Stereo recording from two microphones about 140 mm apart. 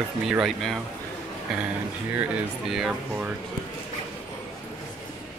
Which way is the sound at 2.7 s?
5° right (ahead or behind).